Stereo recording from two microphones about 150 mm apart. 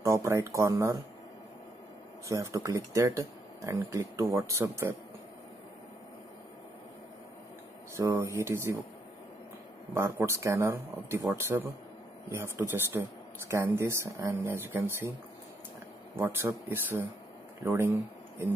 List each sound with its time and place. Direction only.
0.0 s speech: 20° right (ahead or behind)
2.2 s speech: 20° right (ahead or behind)
7.9 s speech: 20° right (ahead or behind)
9.9 s speech: 15° right (ahead or behind)
16.2 s speech: 15° right (ahead or behind)